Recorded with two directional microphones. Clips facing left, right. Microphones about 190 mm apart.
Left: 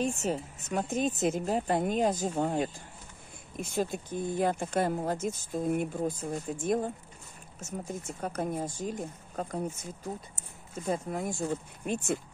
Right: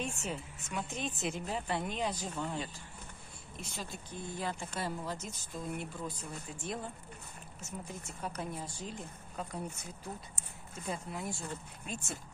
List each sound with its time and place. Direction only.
0.0 s speech: 40° left (ahead or behind); by 12.2 s 60° left (ahead or behind)